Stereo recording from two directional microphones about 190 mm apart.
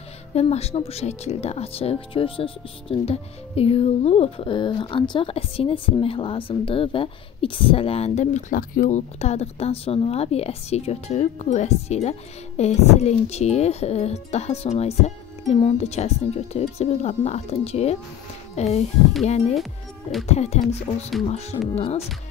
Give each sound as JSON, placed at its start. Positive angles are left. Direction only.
{"t": 0.3, "sound": "speech", "side_deg": 35}